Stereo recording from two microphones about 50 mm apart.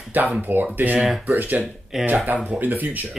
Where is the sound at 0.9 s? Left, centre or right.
Centre.